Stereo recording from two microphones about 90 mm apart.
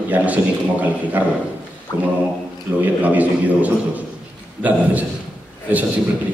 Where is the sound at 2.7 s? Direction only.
20° right (ahead or behind).